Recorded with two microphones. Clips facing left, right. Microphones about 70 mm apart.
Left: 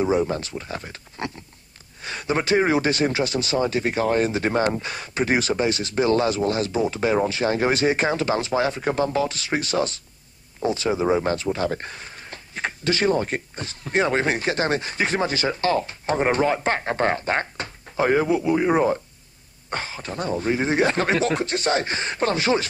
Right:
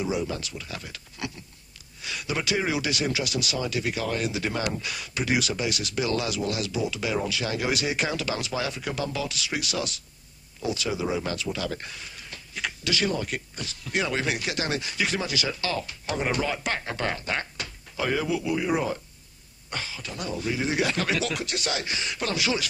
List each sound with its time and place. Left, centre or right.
0.0 s speech: left